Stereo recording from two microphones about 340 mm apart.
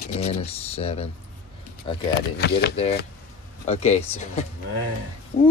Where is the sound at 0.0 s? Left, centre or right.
Centre.